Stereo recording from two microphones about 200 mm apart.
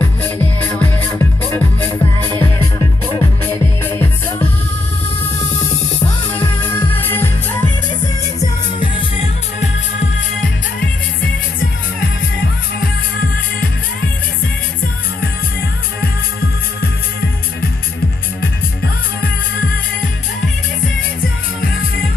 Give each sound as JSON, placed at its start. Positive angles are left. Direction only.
{"t": 0.7, "sound": "music", "side_deg": 10}
{"t": 6.3, "sound": "music", "side_deg": 10}
{"t": 8.4, "sound": "music", "side_deg": 25}